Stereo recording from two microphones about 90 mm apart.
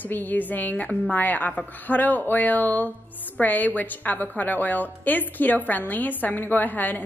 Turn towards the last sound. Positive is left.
turn(degrees=20)  # may be behind; listen again after turning